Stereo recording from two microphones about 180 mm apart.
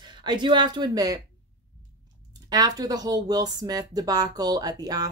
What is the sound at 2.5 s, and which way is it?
Speech, 20° right (ahead or behind).